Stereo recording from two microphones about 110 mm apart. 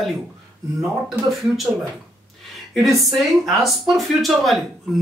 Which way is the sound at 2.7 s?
Centre (ahead or behind).